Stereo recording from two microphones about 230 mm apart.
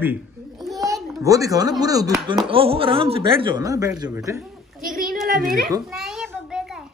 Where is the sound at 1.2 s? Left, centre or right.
Centre.